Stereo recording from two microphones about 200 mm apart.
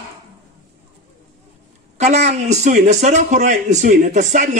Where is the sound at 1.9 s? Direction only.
35° right (ahead or behind).